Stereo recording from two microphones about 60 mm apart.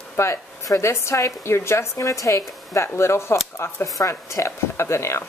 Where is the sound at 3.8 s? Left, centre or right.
Left.